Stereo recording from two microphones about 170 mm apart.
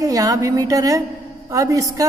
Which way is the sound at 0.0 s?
20° right (ahead or behind).